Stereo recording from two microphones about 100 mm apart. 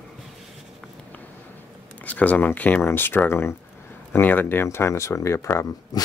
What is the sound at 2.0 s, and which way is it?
Speech, 15° left (ahead or behind).